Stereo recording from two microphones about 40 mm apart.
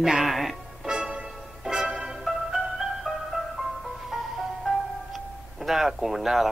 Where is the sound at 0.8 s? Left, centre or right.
Centre.